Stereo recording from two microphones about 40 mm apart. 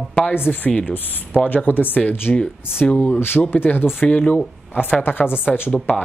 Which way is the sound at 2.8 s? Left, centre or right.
Left.